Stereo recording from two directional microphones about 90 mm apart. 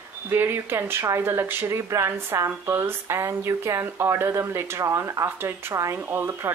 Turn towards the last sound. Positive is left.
turn(degrees=-30)  # may be behind; listen again after turning